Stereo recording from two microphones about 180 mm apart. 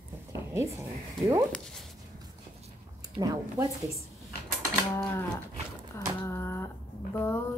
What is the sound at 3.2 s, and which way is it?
Speech, 20° right (ahead or behind).